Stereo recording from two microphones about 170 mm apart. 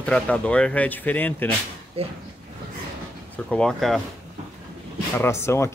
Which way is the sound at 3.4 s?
5° left (ahead or behind).